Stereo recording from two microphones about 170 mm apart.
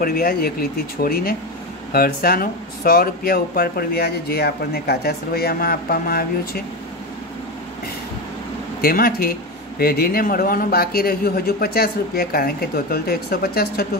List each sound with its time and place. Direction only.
0.0 s speech: 60° left (ahead or behind)
8.8 s speech: 60° left (ahead or behind)